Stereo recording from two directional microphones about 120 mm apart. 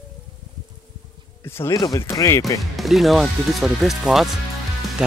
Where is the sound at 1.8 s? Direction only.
25° left (ahead or behind).